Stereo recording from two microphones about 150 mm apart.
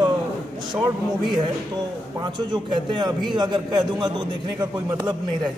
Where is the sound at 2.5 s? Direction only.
30° right (ahead or behind).